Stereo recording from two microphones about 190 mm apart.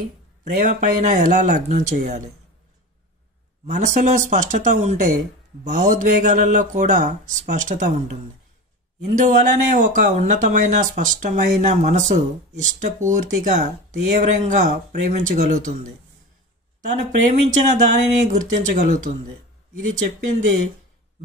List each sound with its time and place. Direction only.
0.4 s speech: 40° right (ahead or behind)
3.6 s speech: 40° right (ahead or behind)
17.3 s speech: 40° right (ahead or behind)